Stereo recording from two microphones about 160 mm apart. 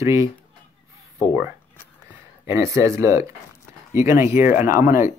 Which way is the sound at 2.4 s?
15° right (ahead or behind).